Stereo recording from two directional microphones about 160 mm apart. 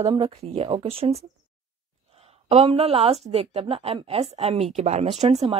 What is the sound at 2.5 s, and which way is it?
A woman's voice, 40° right (ahead or behind).